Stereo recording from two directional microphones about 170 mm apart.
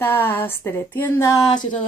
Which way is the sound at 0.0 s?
15° left (ahead or behind).